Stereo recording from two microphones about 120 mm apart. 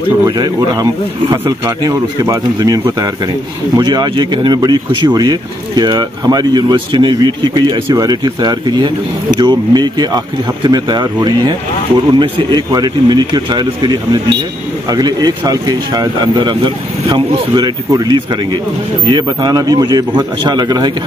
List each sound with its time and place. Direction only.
1.9 s speech: 30° right (ahead or behind)